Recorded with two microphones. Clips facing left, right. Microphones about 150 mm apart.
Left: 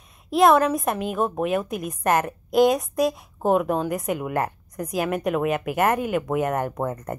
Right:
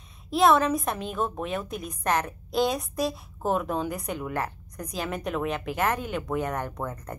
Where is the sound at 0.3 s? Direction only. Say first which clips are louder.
Left 4 dB; centre (ahead or behind).